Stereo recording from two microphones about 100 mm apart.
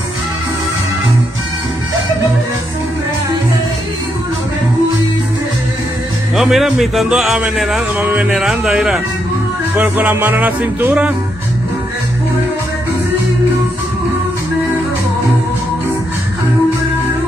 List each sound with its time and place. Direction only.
6.3 s speech: 5° right (ahead or behind)
8.0 s speech: 20° right (ahead or behind)
8.3 s speech: 5° right (ahead or behind)
9.8 s music: 15° right (ahead or behind)